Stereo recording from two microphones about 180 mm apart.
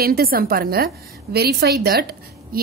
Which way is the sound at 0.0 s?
55° right (ahead or behind).